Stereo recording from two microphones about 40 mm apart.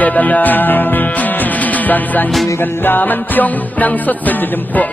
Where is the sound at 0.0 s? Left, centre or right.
Left.